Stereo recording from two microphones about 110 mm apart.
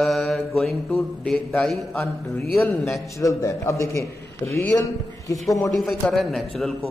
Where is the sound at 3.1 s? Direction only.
30° left (ahead or behind).